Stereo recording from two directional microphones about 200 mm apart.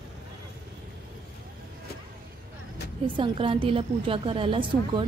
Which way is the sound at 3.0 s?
25° right (ahead or behind).